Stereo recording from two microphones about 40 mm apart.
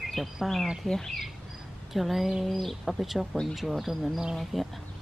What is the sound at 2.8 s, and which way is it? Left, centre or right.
Speech, centre.